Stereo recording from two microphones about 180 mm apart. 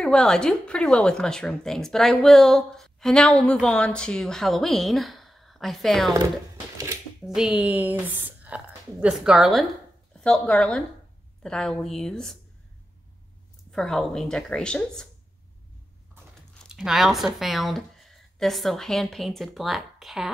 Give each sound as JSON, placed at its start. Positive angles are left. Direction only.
{"t": 0.0, "sound": "a woman's voice", "side_deg": 5}
{"t": 7.2, "sound": "a woman's voice", "side_deg": -5}
{"t": 13.7, "sound": "a woman's voice", "side_deg": 0}
{"t": 16.7, "sound": "a woman's voice", "side_deg": 0}